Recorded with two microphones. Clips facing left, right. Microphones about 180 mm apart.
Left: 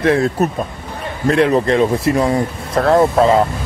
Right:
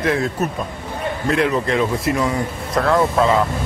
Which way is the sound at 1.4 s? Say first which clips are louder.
Left 6 dB; 35° left (ahead or behind).